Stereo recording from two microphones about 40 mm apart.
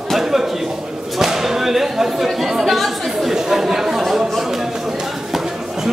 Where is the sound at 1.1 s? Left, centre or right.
Centre.